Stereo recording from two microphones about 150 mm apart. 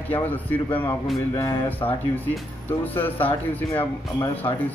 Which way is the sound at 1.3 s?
25° left (ahead or behind).